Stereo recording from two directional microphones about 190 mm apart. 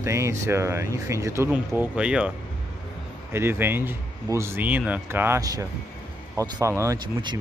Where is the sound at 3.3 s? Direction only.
10° right (ahead or behind).